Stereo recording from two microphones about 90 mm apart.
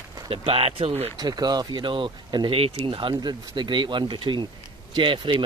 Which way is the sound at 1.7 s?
70° right (ahead or behind).